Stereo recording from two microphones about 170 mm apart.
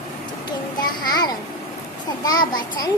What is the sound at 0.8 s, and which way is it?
A child's voice, 25° left (ahead or behind).